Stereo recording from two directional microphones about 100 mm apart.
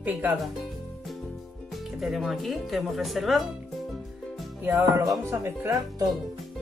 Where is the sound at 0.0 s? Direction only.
15° right (ahead or behind).